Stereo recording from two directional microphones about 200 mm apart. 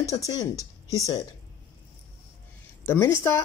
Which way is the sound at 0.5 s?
15° right (ahead or behind).